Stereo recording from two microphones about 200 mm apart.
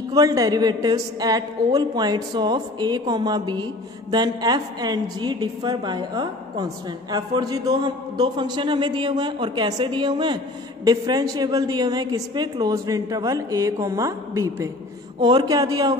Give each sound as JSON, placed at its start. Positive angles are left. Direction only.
{"t": 0.1, "sound": "a woman's voice", "side_deg": -20}